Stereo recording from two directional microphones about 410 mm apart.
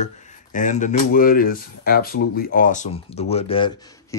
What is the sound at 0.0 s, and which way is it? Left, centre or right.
Speech, centre.